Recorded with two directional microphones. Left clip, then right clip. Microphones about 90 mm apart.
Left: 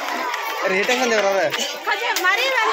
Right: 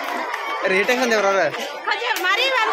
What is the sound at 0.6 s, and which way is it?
Speech, 20° right (ahead or behind).